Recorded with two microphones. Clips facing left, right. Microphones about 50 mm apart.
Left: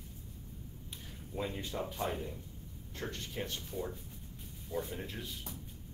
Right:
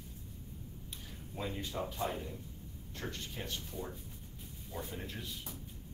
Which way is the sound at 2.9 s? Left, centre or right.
Left.